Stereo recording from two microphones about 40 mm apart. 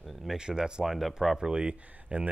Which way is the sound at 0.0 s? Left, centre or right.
Centre.